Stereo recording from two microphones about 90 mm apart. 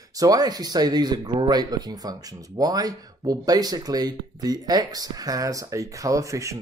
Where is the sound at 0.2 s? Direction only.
45° right (ahead or behind).